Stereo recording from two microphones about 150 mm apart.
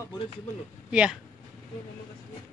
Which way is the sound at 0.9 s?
5° right (ahead or behind).